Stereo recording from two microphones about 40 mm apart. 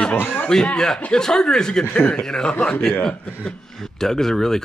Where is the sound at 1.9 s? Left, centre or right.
Left.